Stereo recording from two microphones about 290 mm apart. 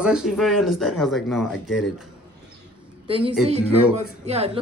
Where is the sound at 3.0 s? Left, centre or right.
Centre.